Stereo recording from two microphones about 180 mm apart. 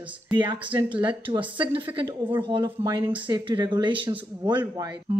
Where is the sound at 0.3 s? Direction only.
25° right (ahead or behind).